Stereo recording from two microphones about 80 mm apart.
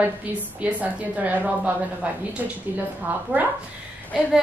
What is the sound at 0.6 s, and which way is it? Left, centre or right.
A woman's voice, centre.